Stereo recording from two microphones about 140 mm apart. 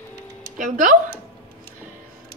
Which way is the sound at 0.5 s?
65° right (ahead or behind).